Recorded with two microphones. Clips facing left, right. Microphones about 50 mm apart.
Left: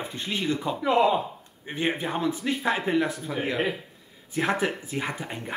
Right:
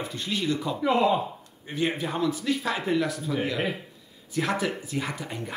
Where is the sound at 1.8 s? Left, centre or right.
Left.